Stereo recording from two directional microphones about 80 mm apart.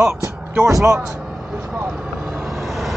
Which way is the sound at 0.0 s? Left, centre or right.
Right.